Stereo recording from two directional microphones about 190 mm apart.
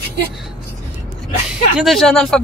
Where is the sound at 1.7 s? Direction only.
Centre (ahead or behind).